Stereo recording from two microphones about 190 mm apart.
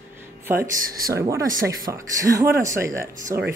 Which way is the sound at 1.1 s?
15° right (ahead or behind).